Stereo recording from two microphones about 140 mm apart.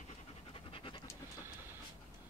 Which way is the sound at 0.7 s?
40° left (ahead or behind).